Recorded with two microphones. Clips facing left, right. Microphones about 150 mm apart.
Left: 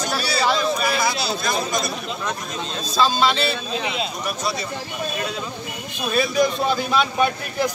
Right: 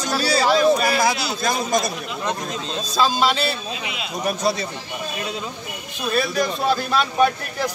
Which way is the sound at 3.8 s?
30° left (ahead or behind).